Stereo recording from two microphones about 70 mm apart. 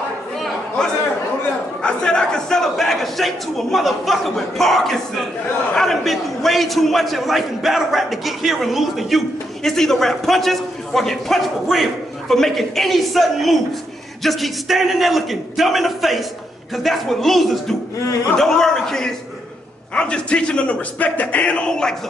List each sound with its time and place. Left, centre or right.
1.8 s a man's voice: centre